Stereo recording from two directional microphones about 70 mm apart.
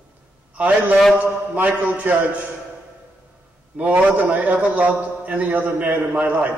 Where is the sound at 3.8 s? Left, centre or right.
Centre.